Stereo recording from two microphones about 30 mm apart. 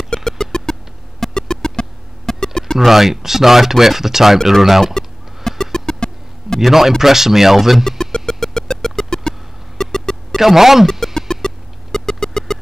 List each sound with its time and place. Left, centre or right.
0.1 s synthesizer: centre
1.3 s music: left
2.8 s speech: centre
5.5 s chicken: centre
5.9 s music: left
6.6 s speech: centre
8.0 s music: centre
10.4 s speech: centre
11.1 s music: centre